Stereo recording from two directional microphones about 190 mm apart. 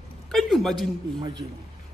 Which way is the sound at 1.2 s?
25° right (ahead or behind).